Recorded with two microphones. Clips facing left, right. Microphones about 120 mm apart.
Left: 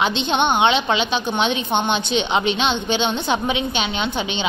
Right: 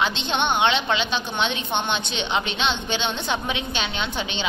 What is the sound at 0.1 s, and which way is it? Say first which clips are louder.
A woman's voice: left 5 dB; 10° left (ahead or behind).